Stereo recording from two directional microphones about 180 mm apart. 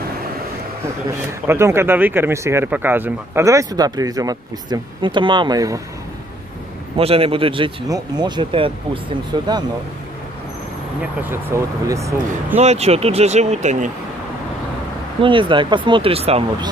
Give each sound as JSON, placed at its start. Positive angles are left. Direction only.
{"t": 1.5, "sound": "speech", "side_deg": -15}
{"t": 7.0, "sound": "speech", "side_deg": -30}
{"t": 11.0, "sound": "speech", "side_deg": -15}
{"t": 12.5, "sound": "speech", "side_deg": -35}
{"t": 15.2, "sound": "speech", "side_deg": -25}